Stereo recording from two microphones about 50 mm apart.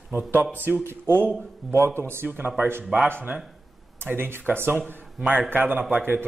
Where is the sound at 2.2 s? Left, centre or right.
Right.